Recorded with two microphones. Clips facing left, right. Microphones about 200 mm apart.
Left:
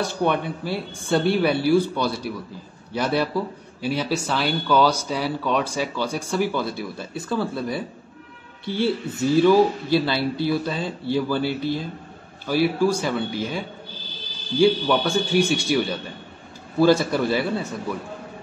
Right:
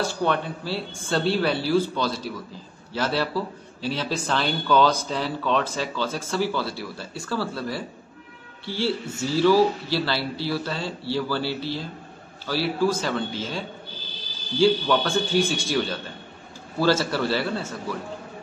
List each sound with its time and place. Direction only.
0.0 s speech: 15° left (ahead or behind)